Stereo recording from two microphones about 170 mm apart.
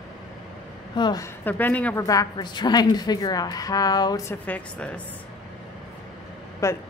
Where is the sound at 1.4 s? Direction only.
10° left (ahead or behind).